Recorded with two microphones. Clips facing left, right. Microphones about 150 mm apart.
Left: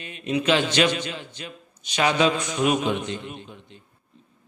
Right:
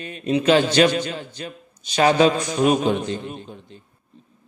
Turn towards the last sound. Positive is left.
turn(degrees=-35)  # may be behind; listen again after turning